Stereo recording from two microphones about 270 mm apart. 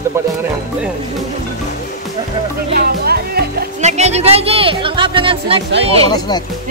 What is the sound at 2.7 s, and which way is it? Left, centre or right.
Speech, right.